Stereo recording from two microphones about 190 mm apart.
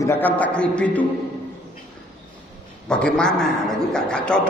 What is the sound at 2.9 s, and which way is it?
A man's voice, 5° left (ahead or behind).